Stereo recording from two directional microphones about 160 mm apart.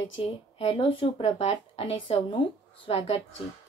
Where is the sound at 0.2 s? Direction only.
35° left (ahead or behind).